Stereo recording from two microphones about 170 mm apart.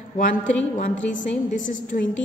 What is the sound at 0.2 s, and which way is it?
Speech, 50° left (ahead or behind).